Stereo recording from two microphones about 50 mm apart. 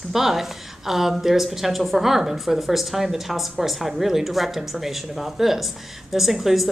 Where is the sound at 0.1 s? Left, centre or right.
Centre.